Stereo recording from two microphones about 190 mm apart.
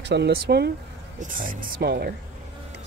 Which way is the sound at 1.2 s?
45° right (ahead or behind).